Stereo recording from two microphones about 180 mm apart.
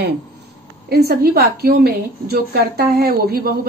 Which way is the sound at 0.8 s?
60° right (ahead or behind).